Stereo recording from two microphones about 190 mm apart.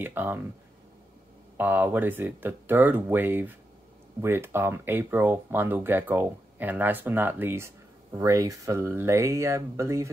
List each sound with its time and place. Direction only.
0.0 s speech: 10° right (ahead or behind)
1.6 s speech: 10° right (ahead or behind)